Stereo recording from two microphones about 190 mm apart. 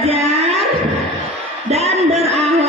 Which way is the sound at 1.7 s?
35° right (ahead or behind).